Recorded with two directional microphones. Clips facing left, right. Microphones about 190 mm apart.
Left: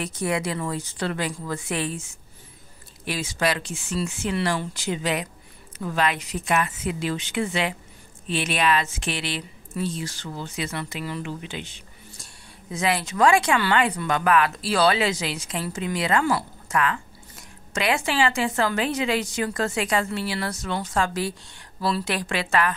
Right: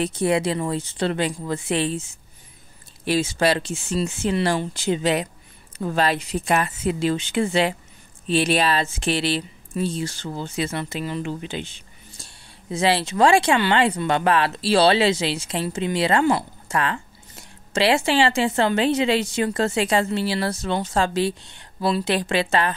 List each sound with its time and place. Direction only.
0.0 s speech: 30° right (ahead or behind)
3.1 s a woman's voice: 30° right (ahead or behind)